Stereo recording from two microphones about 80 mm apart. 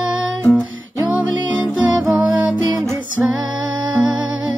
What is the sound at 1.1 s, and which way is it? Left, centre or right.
Music, centre.